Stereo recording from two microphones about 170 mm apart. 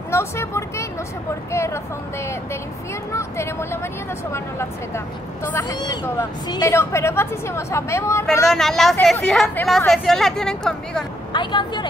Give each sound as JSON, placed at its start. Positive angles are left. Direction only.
{"t": 0.1, "sound": "speech", "side_deg": 15}
{"t": 3.1, "sound": "speech", "side_deg": 15}
{"t": 8.5, "sound": "speech", "side_deg": 0}
{"t": 11.3, "sound": "speech", "side_deg": 25}